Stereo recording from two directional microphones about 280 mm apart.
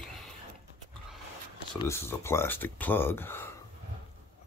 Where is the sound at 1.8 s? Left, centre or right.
Centre.